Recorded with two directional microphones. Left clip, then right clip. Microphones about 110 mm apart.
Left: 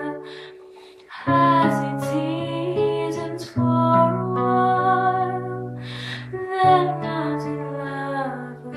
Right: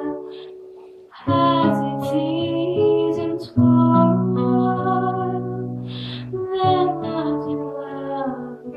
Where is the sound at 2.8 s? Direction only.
70° left (ahead or behind).